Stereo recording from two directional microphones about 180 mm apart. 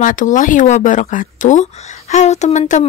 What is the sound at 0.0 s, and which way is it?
Speech, 45° left (ahead or behind).